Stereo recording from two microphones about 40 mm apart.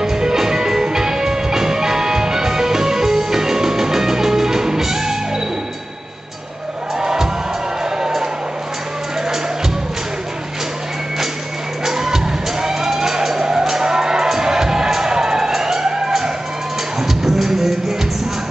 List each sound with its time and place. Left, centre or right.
0.0 s music: centre
7.0 s music: centre
11.8 s music: centre
17.0 s music: centre